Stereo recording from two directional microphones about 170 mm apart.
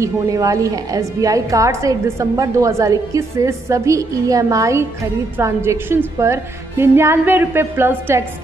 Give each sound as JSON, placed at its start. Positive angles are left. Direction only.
{"t": 0.0, "sound": "a woman's voice", "side_deg": -20}